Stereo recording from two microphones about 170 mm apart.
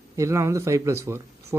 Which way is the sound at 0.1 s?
15° right (ahead or behind).